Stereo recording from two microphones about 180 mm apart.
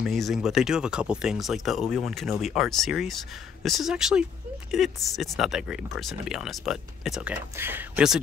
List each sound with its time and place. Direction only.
0.0 s speech: centre (ahead or behind)